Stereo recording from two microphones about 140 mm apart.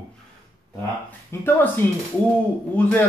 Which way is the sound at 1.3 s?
20° left (ahead or behind).